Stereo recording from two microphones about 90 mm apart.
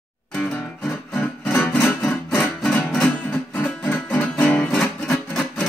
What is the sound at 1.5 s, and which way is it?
Music, 20° left (ahead or behind).